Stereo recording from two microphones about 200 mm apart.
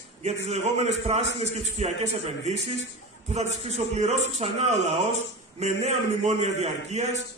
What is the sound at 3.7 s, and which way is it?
A man's voice, 35° right (ahead or behind).